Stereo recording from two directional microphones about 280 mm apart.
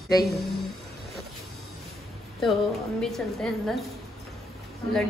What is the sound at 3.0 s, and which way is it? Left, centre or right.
Speech, centre.